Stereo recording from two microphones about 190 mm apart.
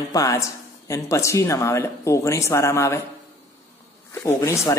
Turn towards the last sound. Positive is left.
turn(degrees=15)  # may be behind; listen again after turning